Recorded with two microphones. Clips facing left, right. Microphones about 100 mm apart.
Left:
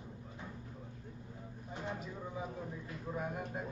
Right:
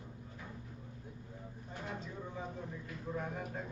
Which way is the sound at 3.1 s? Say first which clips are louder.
Left 1 dB; 10° left (ahead or behind).